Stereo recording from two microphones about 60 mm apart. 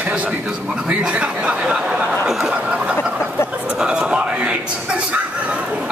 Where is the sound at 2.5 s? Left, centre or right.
Centre.